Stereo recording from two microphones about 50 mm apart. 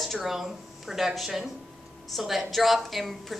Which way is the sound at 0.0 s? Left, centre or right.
Centre.